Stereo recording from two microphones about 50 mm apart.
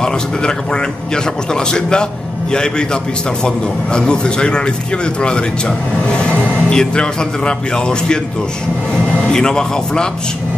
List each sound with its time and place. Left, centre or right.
0.0 s a man's voice: centre
9.3 s a man's voice: centre